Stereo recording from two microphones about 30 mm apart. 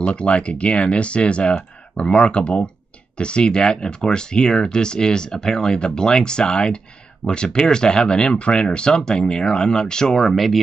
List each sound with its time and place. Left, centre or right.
0.0 s speech: left
7.2 s speech: left
7.6 s speech: left
10.3 s speech: centre